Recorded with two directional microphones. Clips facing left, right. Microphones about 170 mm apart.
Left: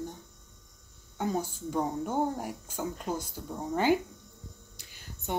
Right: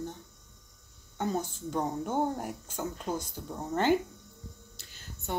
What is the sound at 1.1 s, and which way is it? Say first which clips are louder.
Speech: left 1 dB; 10° left (ahead or behind).